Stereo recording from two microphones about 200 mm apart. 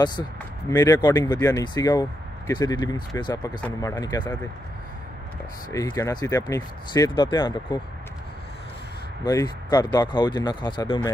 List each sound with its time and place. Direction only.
0.7 s speech: 15° left (ahead or behind)
5.7 s speech: 15° left (ahead or behind)
9.2 s speech: 20° left (ahead or behind)